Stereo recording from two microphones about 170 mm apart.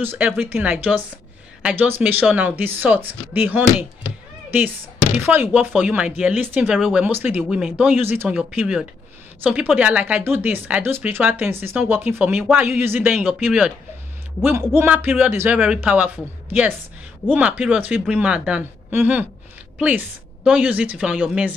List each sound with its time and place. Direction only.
0.0 s speech: 10° right (ahead or behind)
5.2 s speech: 10° right (ahead or behind)
13.1 s speech: centre (ahead or behind)
17.3 s speech: 10° right (ahead or behind)
20.4 s speech: 10° right (ahead or behind)